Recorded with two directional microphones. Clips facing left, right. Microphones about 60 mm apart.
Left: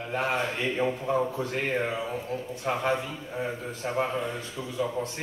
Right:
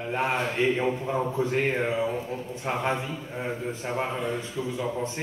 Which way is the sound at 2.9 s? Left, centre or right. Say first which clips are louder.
Left 1 dB; centre.